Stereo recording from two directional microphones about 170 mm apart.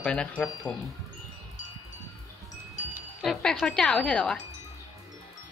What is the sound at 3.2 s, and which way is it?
Speech, centre (ahead or behind).